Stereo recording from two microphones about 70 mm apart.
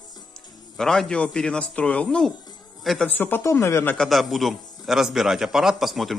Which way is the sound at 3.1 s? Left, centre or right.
Left.